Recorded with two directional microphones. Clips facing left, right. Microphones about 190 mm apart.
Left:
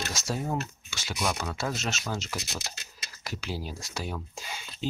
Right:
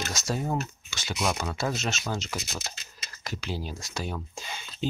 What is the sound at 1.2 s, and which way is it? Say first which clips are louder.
Speech: right 2 dB; 5° right (ahead or behind).